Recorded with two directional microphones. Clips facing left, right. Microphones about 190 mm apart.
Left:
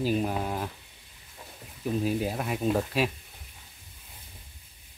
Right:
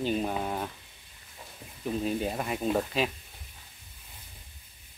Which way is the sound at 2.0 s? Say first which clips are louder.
Even; centre (ahead or behind).